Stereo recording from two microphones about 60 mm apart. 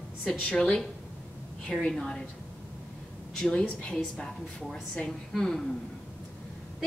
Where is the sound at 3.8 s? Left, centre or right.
Centre.